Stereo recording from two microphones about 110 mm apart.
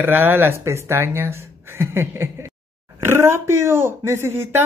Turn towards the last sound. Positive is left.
turn(degrees=-25)  # may be behind; listen again after turning